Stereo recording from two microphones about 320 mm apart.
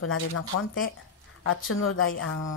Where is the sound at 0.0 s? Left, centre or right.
Left.